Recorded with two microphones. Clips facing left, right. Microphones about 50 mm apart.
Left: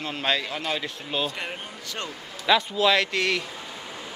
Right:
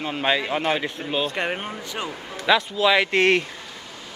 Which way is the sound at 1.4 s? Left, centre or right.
Right.